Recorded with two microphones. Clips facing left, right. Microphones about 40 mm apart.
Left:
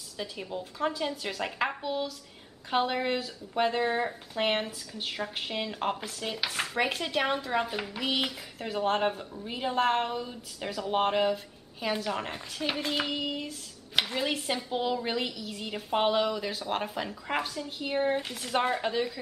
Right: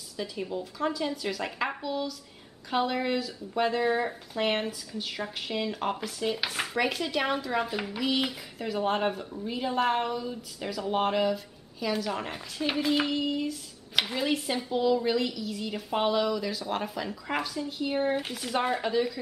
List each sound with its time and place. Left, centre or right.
0.2 s a woman's voice: centre
1.4 s speech: centre
1.8 s a woman's voice: centre
6.0 s a woman's voice: centre
13.4 s a sound: centre
14.1 s speech: centre
14.7 s a woman's voice: left
18.2 s speech: centre
18.6 s a woman's voice: centre